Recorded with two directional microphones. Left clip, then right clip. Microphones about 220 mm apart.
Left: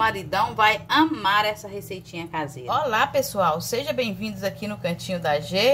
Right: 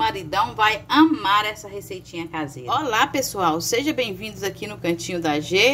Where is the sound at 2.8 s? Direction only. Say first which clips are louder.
Even; 35° right (ahead or behind).